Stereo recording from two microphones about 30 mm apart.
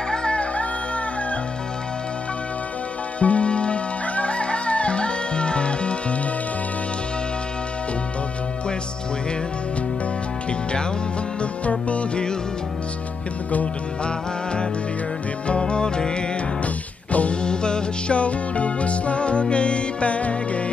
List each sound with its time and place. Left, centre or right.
0.1 s music: left
3.2 s music: left
11.6 s music: left
14.0 s music: left
17.1 s music: left
17.4 s music: left
18.1 s music: left